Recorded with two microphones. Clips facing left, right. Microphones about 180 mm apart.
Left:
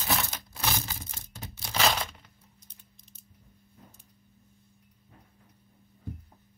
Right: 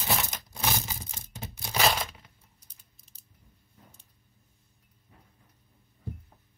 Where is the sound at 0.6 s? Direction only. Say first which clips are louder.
Right 1 dB; 20° right (ahead or behind).